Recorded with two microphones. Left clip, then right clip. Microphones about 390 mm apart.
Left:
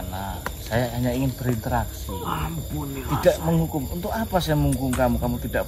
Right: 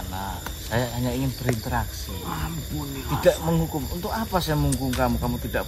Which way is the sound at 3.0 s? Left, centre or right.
Centre.